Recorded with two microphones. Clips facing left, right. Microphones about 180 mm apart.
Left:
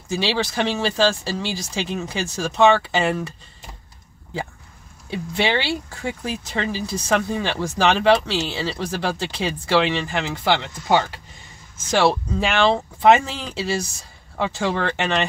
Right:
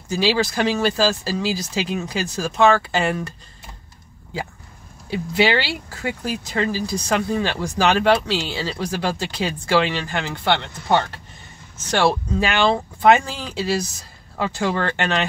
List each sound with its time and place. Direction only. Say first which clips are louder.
0.1 s speech: right 3 dB; centre (ahead or behind)
5.1 s speech: right 3 dB; 5° right (ahead or behind)